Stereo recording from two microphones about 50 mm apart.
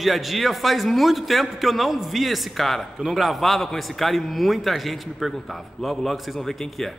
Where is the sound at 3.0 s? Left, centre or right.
Centre.